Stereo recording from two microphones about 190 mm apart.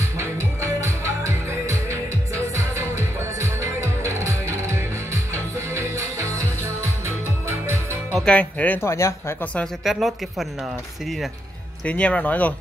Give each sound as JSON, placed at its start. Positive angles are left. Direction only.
{"t": 0.2, "sound": "music", "side_deg": -15}
{"t": 8.2, "sound": "speech", "side_deg": 5}
{"t": 11.8, "sound": "speech", "side_deg": 5}